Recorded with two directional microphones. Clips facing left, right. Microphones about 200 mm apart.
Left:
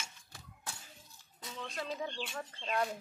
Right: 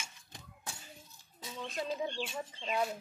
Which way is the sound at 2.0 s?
15° right (ahead or behind).